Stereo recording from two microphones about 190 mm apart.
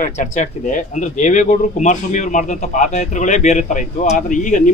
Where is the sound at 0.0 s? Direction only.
40° left (ahead or behind).